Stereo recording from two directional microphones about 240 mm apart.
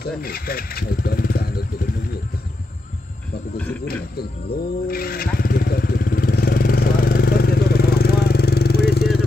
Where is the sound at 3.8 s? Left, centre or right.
Left.